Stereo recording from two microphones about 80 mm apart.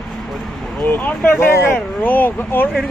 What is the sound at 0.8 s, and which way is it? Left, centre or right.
Speech, left.